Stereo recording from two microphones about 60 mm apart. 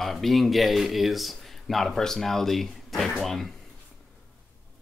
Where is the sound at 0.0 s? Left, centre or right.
Centre.